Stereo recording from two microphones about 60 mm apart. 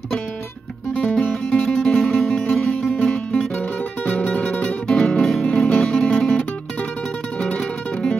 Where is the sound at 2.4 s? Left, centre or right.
Centre.